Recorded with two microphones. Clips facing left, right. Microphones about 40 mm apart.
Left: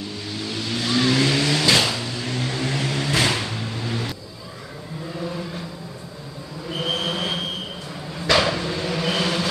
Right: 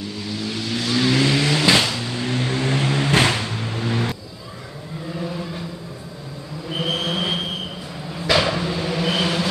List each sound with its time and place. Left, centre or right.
0.5 s vehicle: centre
2.1 s vehicle: right
5.2 s chant: centre
6.7 s a sound: centre
8.2 s vehicle: centre